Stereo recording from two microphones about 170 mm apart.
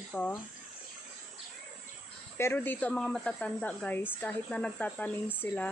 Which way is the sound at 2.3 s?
10° left (ahead or behind).